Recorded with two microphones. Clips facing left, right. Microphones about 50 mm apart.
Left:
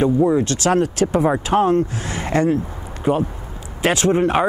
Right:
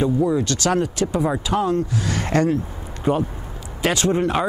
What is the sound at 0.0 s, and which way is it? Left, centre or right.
Speech, left.